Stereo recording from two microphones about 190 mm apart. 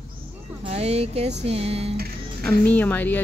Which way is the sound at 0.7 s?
35° right (ahead or behind).